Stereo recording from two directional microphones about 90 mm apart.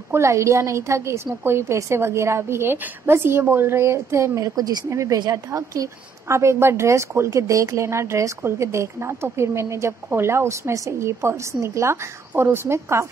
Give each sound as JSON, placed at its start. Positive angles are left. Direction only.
{"t": 0.1, "sound": "a woman's voice", "side_deg": -30}